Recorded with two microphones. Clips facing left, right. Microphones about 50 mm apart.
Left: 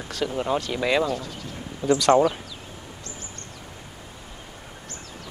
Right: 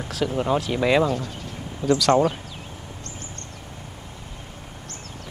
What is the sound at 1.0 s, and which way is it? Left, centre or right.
Speech, right.